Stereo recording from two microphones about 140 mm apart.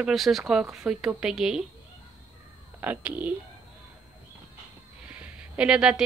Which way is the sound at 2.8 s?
10° right (ahead or behind).